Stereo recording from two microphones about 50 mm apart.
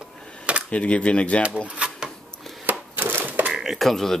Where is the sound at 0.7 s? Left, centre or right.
Left.